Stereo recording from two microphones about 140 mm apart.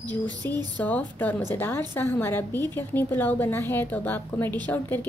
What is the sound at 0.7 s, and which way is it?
A woman's voice, 10° left (ahead or behind).